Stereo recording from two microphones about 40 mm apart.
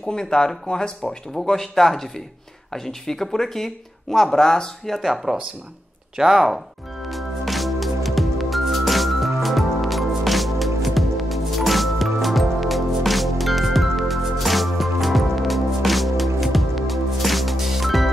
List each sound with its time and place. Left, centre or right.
0.1 s speech: centre
1.3 s speech: centre
4.8 s speech: centre
5.1 s speech: centre
7.1 s music: centre